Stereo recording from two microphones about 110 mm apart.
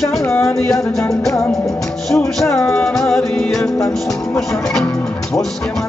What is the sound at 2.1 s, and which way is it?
Music, 20° left (ahead or behind).